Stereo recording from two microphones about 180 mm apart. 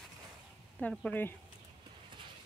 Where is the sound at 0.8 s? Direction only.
5° left (ahead or behind).